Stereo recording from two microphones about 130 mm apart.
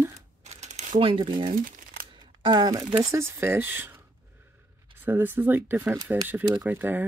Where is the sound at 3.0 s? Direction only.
20° right (ahead or behind).